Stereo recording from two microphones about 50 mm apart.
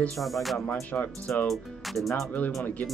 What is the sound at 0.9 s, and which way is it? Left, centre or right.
Speech, left.